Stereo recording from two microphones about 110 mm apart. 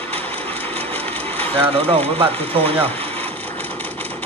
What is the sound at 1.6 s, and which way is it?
Speech, 60° right (ahead or behind).